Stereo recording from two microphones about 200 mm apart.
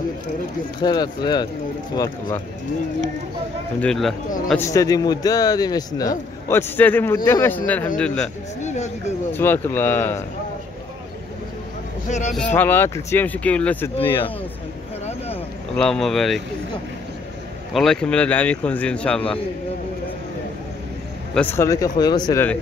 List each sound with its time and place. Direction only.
0.7 s a man's voice: 20° left (ahead or behind)
3.8 s speech: centre (ahead or behind)
4.6 s a man's voice: 15° left (ahead or behind)
8.6 s speech: 35° left (ahead or behind)
9.3 s a man's voice: 10° left (ahead or behind)
12.1 s speech: 35° left (ahead or behind)
12.5 s a man's voice: 10° left (ahead or behind)
15.7 s speech: 5° left (ahead or behind)
17.7 s speech: 5° left (ahead or behind)
21.4 s a man's voice: 10° left (ahead or behind)